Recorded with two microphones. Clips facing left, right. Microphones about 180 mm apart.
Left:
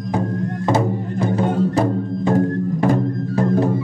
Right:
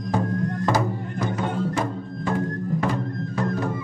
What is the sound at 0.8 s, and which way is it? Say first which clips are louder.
Music: left 6 dB; 35° left (ahead or behind).